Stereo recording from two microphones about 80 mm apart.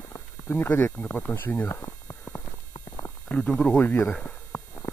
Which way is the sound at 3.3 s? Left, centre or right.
Centre.